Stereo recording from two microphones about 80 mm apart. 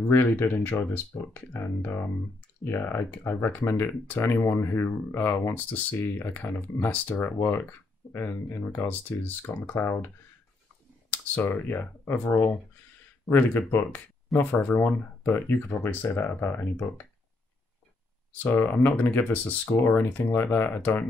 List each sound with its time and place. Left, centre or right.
0.1 s speech: left
18.4 s speech: left